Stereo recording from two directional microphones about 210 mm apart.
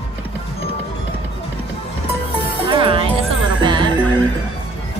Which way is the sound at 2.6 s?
25° right (ahead or behind).